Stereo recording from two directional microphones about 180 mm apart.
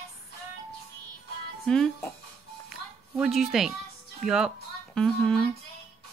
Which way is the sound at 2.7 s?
Centre (ahead or behind).